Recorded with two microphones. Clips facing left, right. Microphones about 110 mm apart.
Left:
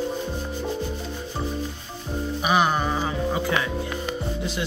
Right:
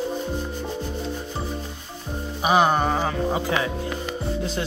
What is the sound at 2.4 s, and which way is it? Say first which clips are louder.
Music: right 3 dB; 25° right (ahead or behind).